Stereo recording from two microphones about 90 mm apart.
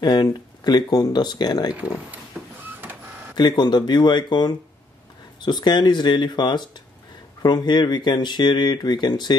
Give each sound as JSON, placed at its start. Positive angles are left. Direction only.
{"t": 0.0, "sound": "speech", "side_deg": 50}
{"t": 1.7, "sound": "speech", "side_deg": -15}
{"t": 2.3, "sound": "printer", "side_deg": -20}
{"t": 3.3, "sound": "speech", "side_deg": 55}